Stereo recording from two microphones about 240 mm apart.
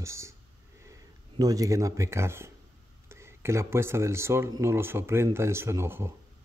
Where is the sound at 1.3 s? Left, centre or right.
Centre.